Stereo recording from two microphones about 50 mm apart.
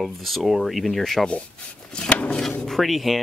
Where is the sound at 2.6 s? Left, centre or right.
Centre.